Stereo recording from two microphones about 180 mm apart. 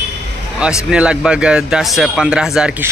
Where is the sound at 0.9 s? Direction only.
5° right (ahead or behind).